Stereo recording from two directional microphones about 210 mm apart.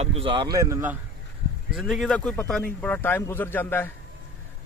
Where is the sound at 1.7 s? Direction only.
Centre (ahead or behind).